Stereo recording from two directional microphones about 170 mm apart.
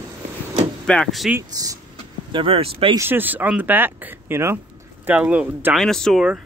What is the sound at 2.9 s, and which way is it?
Speech, 15° right (ahead or behind).